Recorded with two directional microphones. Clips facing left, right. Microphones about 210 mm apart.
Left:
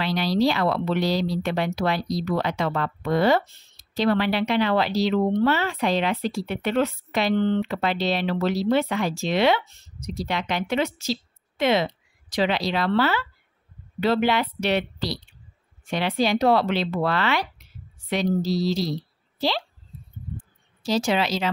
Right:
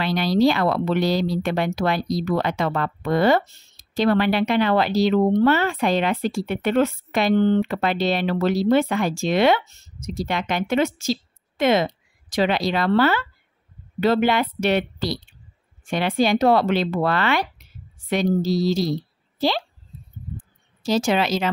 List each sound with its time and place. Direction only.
0.0 s speech: 50° right (ahead or behind)
20.8 s speech: 50° right (ahead or behind)